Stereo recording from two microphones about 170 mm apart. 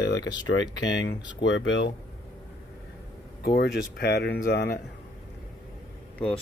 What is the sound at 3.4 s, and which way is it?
Speech, 65° left (ahead or behind).